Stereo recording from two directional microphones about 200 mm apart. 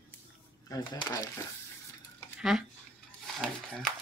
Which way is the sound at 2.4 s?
Centre (ahead or behind).